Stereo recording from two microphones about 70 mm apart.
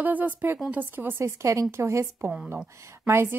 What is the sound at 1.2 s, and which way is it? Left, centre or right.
A woman's voice, right.